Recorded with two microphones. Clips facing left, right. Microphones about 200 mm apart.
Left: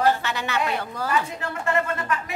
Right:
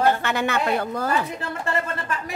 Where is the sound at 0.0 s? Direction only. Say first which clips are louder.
Right 2 dB; 55° right (ahead or behind).